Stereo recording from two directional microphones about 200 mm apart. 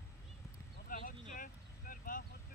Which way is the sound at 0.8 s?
45° left (ahead or behind).